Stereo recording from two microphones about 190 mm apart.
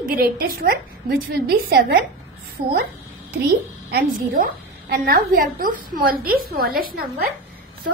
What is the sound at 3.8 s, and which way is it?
A woman's voice, 55° right (ahead or behind).